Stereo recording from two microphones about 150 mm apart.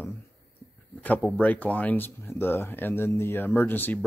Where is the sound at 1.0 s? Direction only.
10° left (ahead or behind).